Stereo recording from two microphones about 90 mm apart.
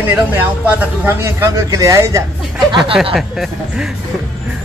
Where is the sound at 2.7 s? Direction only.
60° right (ahead or behind).